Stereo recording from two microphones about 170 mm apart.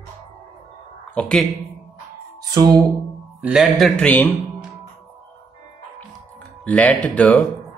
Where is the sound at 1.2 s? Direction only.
5° left (ahead or behind).